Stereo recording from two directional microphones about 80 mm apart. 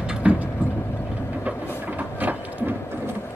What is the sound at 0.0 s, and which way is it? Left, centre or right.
Vehicle, centre.